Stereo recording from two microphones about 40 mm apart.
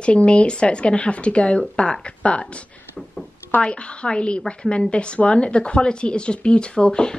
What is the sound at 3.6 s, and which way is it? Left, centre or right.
A woman's voice, left.